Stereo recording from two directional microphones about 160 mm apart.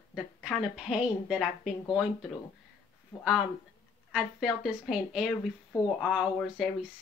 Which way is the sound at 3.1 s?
20° left (ahead or behind).